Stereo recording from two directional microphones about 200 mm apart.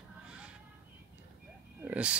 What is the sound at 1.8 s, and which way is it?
Speech, 5° right (ahead or behind).